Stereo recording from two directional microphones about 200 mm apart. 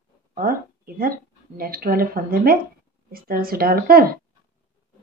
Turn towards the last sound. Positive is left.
turn(degrees=-50)  # may be behind; listen again after turning